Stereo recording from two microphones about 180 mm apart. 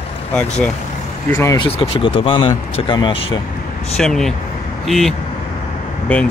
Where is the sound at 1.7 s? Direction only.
30° left (ahead or behind).